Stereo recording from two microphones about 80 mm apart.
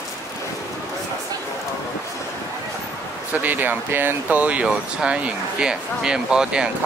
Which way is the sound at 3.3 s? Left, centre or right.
Right.